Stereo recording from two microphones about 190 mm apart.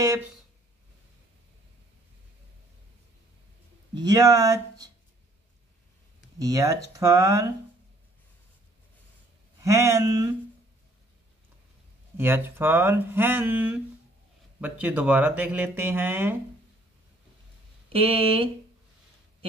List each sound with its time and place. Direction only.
3.9 s speech: 20° right (ahead or behind)
6.3 s speech: 20° right (ahead or behind)
9.6 s speech: 15° right (ahead or behind)
12.2 s speech: 10° right (ahead or behind)
17.9 s speech: 30° right (ahead or behind)